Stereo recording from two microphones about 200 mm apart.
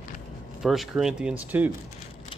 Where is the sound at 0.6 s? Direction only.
Centre (ahead or behind).